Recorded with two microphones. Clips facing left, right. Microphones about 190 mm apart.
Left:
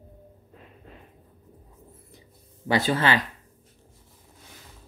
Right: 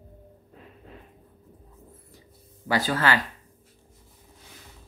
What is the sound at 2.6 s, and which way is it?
Speech, 20° left (ahead or behind).